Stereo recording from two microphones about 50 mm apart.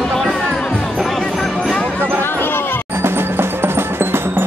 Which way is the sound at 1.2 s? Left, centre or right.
Centre.